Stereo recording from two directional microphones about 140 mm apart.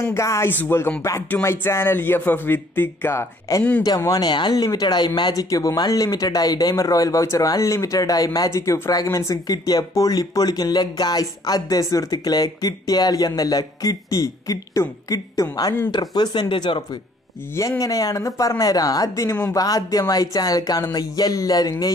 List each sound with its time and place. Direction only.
0.0 s speech: 20° left (ahead or behind)
17.6 s speech: 25° left (ahead or behind)